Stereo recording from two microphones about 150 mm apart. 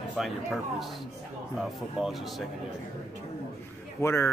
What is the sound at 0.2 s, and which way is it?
Speech, centre (ahead or behind).